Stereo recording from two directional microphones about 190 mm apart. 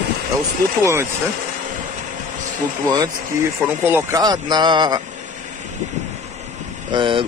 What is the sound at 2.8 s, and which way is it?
Speech, 20° right (ahead or behind).